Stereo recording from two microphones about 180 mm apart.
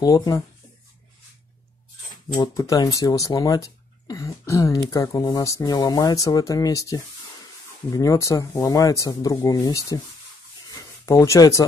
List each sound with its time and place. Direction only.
0.0 s speech: 20° left (ahead or behind)
2.2 s speech: 20° left (ahead or behind)
10.7 s a sound: 20° left (ahead or behind)